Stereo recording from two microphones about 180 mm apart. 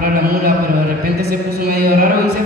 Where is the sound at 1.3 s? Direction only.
55° right (ahead or behind).